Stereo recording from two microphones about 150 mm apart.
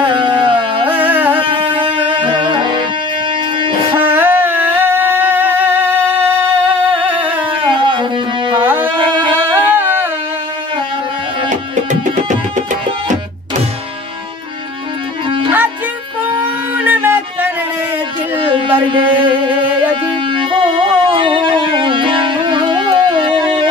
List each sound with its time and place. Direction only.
0.0 s dog: 30° right (ahead or behind)
0.8 s music: 10° right (ahead or behind)
1.4 s music: 35° right (ahead or behind)
4.0 s a sound: 15° right (ahead or behind)
7.7 s music: 30° right (ahead or behind)
8.5 s music: 15° right (ahead or behind)
8.8 s a sound: 35° right (ahead or behind)
9.4 s a sound: 15° right (ahead or behind)
11.4 s music: 55° right (ahead or behind)
15.2 s music: 35° right (ahead or behind)
16.7 s music: 10° right (ahead or behind)
18.9 s a sound: 35° right (ahead or behind)
19.2 s music: 10° right (ahead or behind)
20.2 s music: 35° right (ahead or behind)